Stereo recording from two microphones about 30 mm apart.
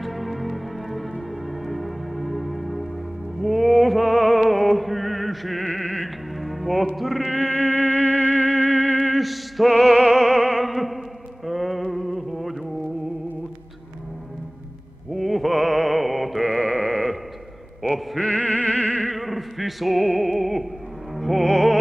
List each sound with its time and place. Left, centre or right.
0.0 s music: centre
7.3 s music: left
7.7 s music: left
8.5 s music: left
9.1 s music: centre
11.4 s a sound: centre
15.1 s music: centre
16.8 s sheep: centre
17.8 s a sound: centre
18.2 s music: left
19.0 s music: centre